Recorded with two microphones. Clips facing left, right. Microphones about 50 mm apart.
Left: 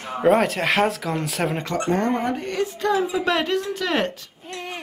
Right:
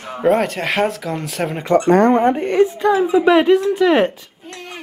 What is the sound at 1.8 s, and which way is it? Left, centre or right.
Speech, right.